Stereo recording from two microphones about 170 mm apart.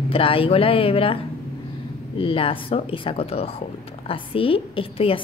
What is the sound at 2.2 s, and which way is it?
A woman's voice, 35° left (ahead or behind).